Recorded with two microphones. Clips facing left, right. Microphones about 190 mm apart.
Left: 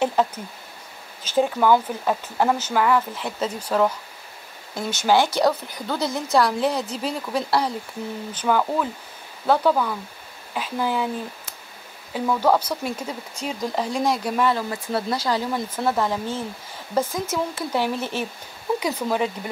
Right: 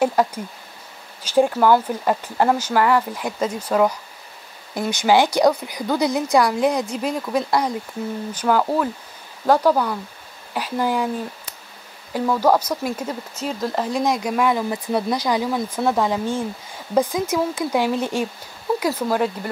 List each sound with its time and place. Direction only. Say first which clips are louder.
0.0 s speech: right 3 dB; 10° right (ahead or behind)
4.7 s speech: right 3 dB; 15° right (ahead or behind)
12.1 s speech: right 2 dB; 10° right (ahead or behind)